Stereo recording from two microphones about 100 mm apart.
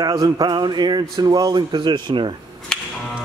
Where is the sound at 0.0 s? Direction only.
45° right (ahead or behind).